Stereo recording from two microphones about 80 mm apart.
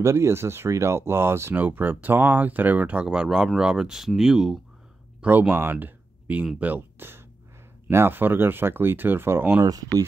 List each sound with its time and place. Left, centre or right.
0.0 s speech: right; by 4.6 s centre
5.2 s speech: right
9.7 s speech: right